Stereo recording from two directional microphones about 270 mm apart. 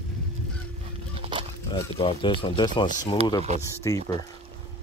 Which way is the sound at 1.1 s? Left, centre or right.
Centre.